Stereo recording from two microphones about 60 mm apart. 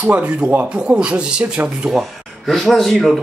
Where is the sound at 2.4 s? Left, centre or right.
Centre.